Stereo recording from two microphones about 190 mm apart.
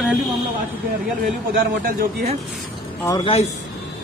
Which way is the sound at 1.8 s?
50° right (ahead or behind).